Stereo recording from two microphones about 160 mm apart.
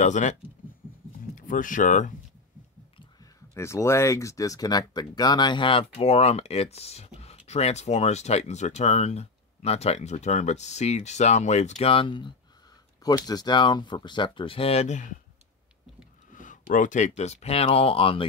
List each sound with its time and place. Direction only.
0.0 s speech: 50° left (ahead or behind)
3.5 s speech: 15° left (ahead or behind); by 15.0 s 45° left (ahead or behind)
16.3 s speech: 55° left (ahead or behind); by 18.2 s 35° left (ahead or behind)